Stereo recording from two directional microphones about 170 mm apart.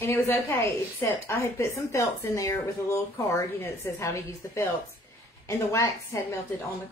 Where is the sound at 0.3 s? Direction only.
10° left (ahead or behind).